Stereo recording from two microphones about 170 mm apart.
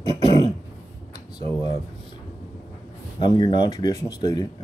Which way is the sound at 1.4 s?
40° right (ahead or behind).